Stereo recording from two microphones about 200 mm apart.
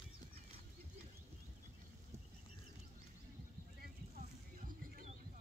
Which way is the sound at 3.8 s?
40° right (ahead or behind).